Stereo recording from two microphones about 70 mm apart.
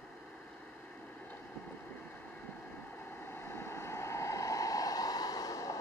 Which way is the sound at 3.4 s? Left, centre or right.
Left.